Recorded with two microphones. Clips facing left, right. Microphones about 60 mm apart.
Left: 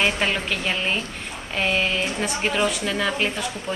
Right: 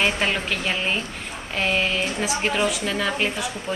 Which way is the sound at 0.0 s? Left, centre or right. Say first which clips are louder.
Even; centre.